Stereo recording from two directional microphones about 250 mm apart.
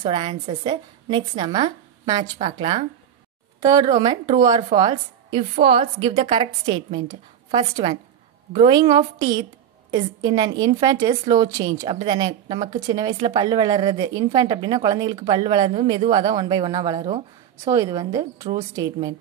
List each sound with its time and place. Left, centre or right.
0.0 s a woman's voice: centre